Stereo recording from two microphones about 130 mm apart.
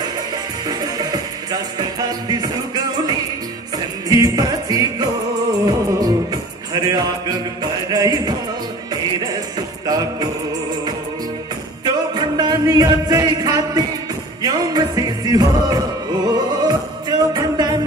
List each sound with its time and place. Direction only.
0.7 s music: 30° right (ahead or behind)
11.8 s music: 30° right (ahead or behind)